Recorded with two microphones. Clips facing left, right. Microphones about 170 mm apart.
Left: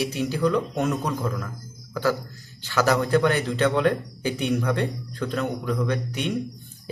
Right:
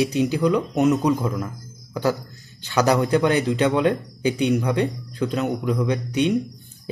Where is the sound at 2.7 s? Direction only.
20° right (ahead or behind).